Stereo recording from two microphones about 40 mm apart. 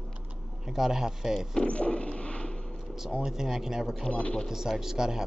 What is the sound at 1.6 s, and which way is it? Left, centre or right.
Speech, left.